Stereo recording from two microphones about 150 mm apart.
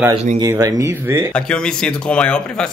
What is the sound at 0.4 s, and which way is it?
Speech, 25° right (ahead or behind).